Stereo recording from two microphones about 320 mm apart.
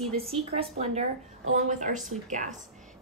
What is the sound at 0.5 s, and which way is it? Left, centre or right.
Speech, centre.